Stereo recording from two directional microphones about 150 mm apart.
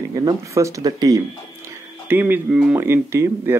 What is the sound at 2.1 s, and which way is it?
Speech, 15° right (ahead or behind).